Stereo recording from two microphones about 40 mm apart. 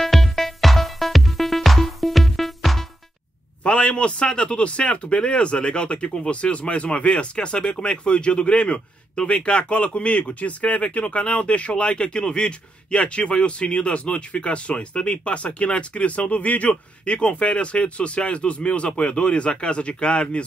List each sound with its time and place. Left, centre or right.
0.0 s music: centre
3.6 s speech: left